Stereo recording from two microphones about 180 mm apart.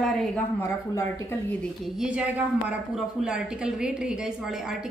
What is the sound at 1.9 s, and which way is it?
A woman's voice, 5° right (ahead or behind).